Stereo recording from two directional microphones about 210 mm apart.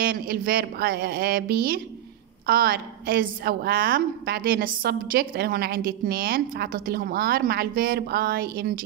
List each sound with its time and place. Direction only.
0.0 s a woman's voice: 45° right (ahead or behind)